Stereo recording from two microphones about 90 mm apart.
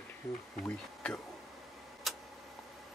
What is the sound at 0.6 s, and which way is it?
Speech, 10° left (ahead or behind).